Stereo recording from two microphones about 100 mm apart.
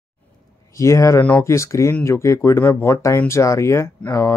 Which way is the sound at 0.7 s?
30° left (ahead or behind).